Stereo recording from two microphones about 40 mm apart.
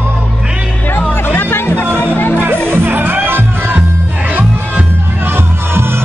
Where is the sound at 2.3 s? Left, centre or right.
Right.